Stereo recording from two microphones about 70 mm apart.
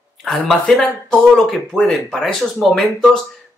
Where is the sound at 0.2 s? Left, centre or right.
Centre.